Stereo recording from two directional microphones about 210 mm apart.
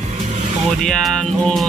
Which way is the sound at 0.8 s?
5° left (ahead or behind).